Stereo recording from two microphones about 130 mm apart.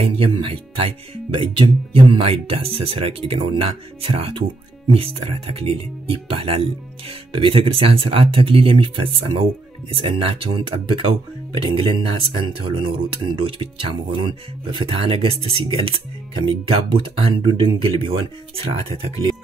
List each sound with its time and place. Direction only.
0.0 s speech: 45° right (ahead or behind)